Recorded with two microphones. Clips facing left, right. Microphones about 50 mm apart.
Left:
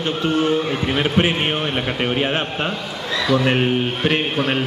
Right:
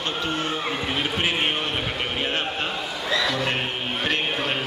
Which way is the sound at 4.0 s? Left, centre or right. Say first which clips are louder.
Left 5 dB; centre.